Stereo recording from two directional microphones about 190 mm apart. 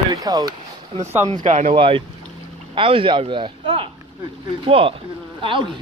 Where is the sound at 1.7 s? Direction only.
30° right (ahead or behind).